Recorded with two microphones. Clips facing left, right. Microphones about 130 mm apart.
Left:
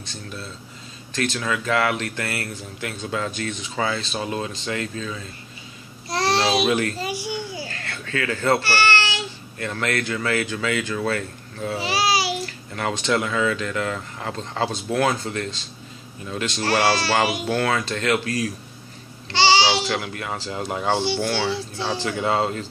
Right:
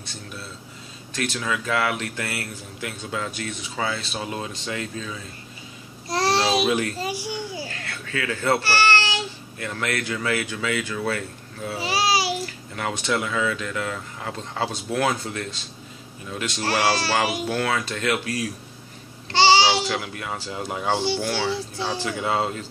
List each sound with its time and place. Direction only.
0.0 s speech: 10° right (ahead or behind)
6.2 s babbling: 10° right (ahead or behind)
6.7 s speech: 10° right (ahead or behind)
7.1 s a child's voice: 35° right (ahead or behind)
7.5 s a sound: 5° right (ahead or behind)
8.6 s a sound: 35° right (ahead or behind)
9.6 s speech: 10° right (ahead or behind)
11.9 s babbling: 30° right (ahead or behind)
12.4 s a child's voice: 5° right (ahead or behind)
19.7 s a child's voice: 5° right (ahead or behind)